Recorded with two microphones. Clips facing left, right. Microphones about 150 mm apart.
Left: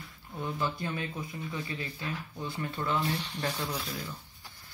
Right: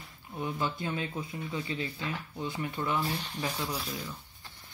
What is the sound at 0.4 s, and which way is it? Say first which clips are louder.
Speech: even; 15° right (ahead or behind).